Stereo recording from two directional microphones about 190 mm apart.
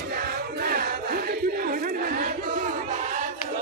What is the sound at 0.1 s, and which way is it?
Battle cry, 50° right (ahead or behind).